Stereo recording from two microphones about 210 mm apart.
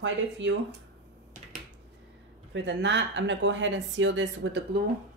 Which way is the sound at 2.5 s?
60° right (ahead or behind).